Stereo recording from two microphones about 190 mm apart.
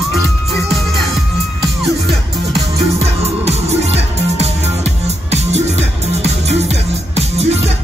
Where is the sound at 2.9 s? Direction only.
35° right (ahead or behind).